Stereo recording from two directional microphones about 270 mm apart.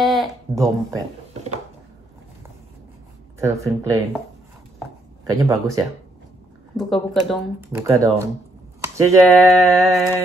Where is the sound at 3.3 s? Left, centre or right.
Centre.